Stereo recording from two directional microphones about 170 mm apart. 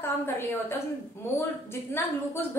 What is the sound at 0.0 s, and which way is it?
Speech, 15° left (ahead or behind).